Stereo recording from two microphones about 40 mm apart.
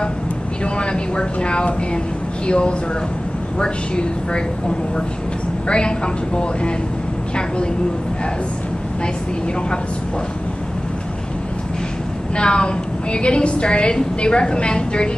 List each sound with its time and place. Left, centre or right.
0.7 s a woman's voice: left
12.4 s a woman's voice: left